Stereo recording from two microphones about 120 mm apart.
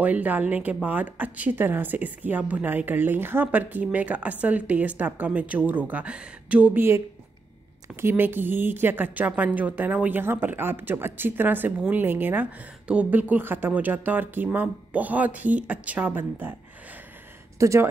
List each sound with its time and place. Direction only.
0.0 s a woman's voice: 15° right (ahead or behind)
17.6 s speech: 25° right (ahead or behind)